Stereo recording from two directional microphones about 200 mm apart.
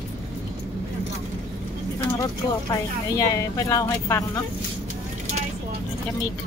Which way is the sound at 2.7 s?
15° left (ahead or behind).